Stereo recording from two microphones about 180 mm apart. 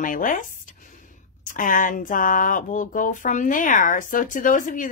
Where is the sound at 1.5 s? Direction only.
50° left (ahead or behind).